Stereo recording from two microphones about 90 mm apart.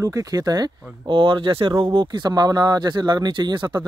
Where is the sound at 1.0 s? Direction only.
65° right (ahead or behind).